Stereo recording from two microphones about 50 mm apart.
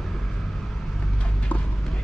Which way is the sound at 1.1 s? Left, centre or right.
Left.